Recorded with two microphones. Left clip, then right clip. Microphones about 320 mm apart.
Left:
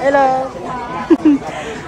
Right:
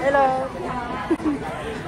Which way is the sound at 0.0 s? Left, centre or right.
Left.